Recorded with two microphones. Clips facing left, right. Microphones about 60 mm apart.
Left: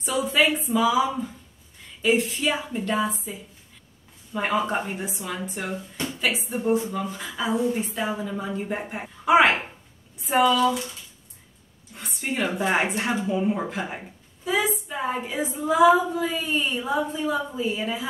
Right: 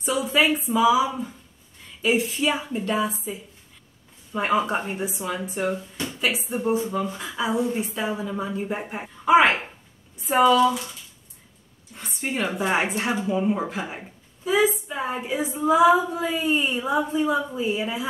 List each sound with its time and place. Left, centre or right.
0.0 s a woman's voice: centre
4.3 s a woman's voice: centre
10.1 s a sound: centre
10.4 s a woman's voice: centre
11.9 s a sound: centre
12.2 s a woman's voice: centre
16.3 s a woman's voice: centre